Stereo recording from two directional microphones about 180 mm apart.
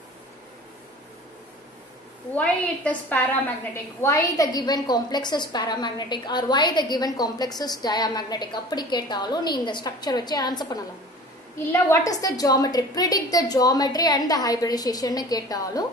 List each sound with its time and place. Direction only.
2.3 s a woman's voice: 5° left (ahead or behind)